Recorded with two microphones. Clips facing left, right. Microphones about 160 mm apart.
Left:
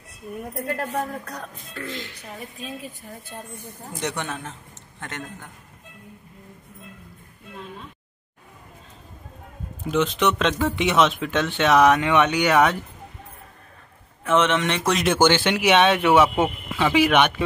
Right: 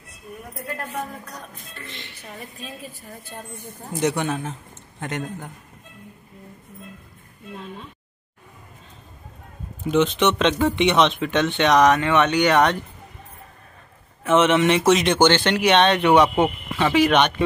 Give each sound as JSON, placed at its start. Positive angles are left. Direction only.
{"t": 4.2, "sound": "a man's voice", "side_deg": -15}
{"t": 9.8, "sound": "speech", "side_deg": 0}
{"t": 14.2, "sound": "speech", "side_deg": -5}